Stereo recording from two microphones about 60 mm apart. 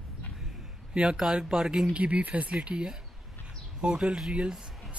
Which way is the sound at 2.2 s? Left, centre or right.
Right.